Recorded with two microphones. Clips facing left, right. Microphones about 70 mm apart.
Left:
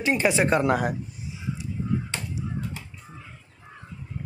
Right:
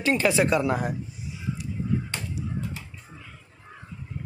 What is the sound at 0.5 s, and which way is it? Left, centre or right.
Speech, left.